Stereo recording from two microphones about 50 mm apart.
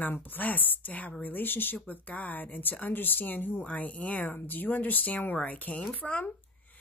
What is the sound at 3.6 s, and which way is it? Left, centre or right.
A woman's voice, left.